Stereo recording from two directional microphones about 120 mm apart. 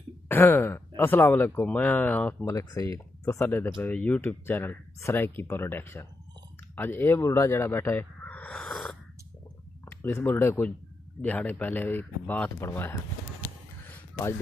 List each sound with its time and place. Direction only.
0.3 s speech: 15° left (ahead or behind)
2.4 s speech: 25° left (ahead or behind); by 8.9 s centre (ahead or behind)
9.8 s speech: 20° left (ahead or behind)
13.8 s a sound: 15° left (ahead or behind)